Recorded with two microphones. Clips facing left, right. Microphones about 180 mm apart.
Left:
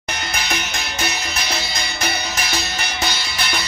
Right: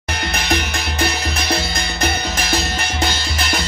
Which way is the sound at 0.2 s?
55° right (ahead or behind).